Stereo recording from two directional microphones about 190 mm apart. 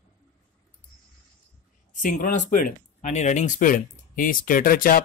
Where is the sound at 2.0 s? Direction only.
45° left (ahead or behind).